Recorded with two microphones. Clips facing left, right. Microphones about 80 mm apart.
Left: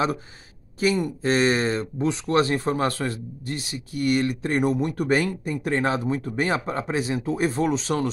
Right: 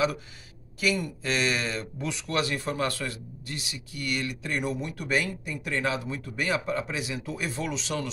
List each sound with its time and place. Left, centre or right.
0.7 s speech: left